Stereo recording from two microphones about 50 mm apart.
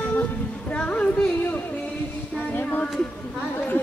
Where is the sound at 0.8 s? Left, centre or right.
Left.